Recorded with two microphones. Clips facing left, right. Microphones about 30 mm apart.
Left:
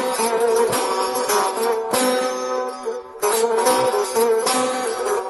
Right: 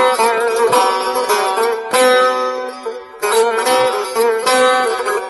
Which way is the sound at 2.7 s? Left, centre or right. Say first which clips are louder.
Right 2 dB; right.